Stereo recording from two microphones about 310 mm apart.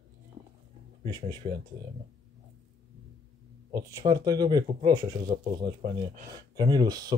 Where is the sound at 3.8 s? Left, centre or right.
Centre.